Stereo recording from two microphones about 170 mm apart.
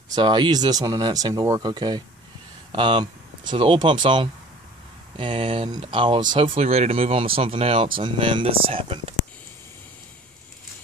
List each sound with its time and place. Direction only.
0.1 s speech: 25° right (ahead or behind)
6.5 s speech: 40° right (ahead or behind)